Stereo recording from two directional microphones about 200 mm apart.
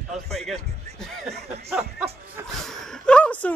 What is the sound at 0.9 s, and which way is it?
Snicker, centre (ahead or behind).